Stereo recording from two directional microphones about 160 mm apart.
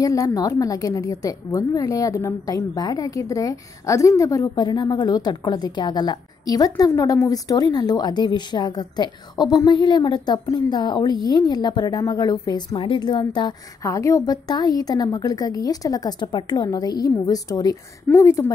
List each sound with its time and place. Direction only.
0.0 s a woman's voice: 20° left (ahead or behind)